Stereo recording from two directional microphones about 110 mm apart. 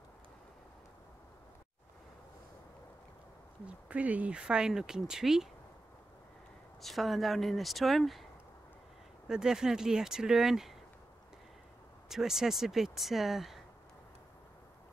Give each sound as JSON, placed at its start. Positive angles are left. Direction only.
{"t": 3.6, "sound": "speech", "side_deg": -10}
{"t": 6.8, "sound": "speech", "side_deg": 0}
{"t": 9.3, "sound": "speech", "side_deg": -5}
{"t": 12.1, "sound": "speech", "side_deg": -5}